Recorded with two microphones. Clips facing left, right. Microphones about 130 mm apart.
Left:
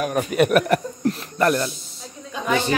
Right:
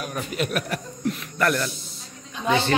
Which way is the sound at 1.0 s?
35° left (ahead or behind).